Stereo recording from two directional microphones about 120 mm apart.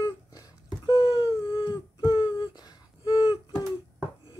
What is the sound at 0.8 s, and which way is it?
Wail, 30° left (ahead or behind).